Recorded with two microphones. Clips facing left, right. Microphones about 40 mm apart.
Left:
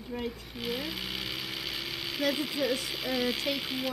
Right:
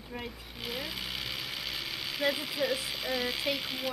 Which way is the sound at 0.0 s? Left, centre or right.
Centre.